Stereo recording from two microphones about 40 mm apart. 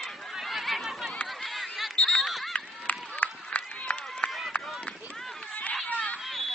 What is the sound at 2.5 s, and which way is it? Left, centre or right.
Run, left.